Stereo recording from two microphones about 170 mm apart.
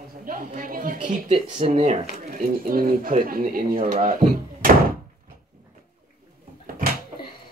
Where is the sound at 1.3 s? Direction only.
40° right (ahead or behind).